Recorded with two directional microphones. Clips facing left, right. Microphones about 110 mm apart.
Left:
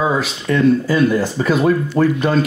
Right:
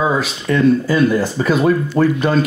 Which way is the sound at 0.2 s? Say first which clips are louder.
Right 1 dB; 20° right (ahead or behind).